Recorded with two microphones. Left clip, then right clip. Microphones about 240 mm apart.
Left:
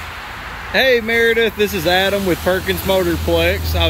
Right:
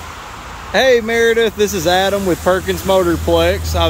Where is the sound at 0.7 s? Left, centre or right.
Centre.